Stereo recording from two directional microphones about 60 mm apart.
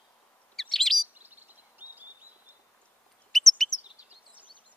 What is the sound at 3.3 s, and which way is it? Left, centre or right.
Chirp, centre.